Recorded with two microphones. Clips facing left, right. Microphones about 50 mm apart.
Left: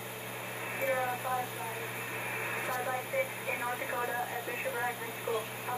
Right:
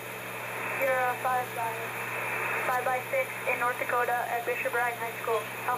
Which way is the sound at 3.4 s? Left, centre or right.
Right.